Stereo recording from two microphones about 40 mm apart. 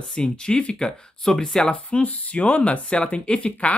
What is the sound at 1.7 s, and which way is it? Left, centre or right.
Speech, left.